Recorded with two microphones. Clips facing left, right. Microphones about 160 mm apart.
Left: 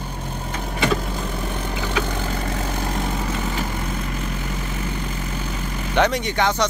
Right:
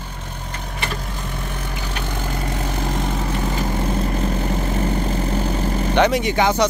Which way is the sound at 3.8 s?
35° right (ahead or behind).